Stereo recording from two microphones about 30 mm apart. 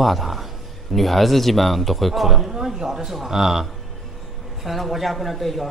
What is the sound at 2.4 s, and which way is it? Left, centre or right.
A woman's voice, centre.